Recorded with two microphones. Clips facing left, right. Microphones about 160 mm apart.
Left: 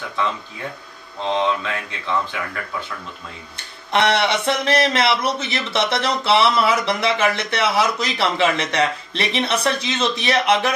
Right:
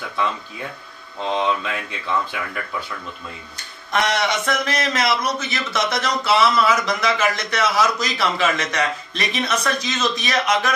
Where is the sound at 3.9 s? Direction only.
30° left (ahead or behind).